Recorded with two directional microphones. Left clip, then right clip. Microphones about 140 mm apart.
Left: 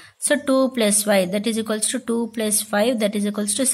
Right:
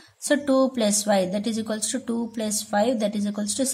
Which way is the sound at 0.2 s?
15° left (ahead or behind).